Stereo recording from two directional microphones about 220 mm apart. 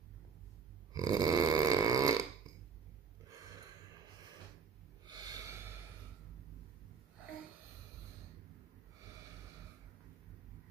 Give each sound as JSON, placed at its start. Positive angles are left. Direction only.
{"t": 0.9, "sound": "snoring", "side_deg": -15}
{"t": 5.0, "sound": "snort", "side_deg": -15}